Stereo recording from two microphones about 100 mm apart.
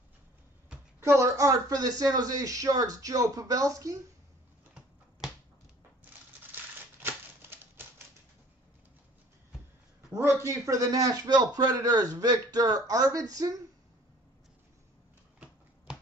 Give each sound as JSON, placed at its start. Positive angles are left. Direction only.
{"t": 1.0, "sound": "a man's voice", "side_deg": -30}
{"t": 6.4, "sound": "a sound", "side_deg": -20}
{"t": 10.1, "sound": "a man's voice", "side_deg": -30}